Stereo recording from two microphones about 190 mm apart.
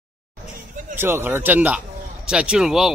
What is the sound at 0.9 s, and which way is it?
Speech, 10° right (ahead or behind).